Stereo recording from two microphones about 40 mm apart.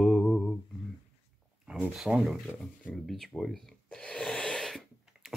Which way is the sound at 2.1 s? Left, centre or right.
Centre.